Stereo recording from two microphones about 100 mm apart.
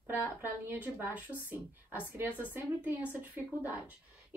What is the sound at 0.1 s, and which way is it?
A woman's voice, 20° right (ahead or behind).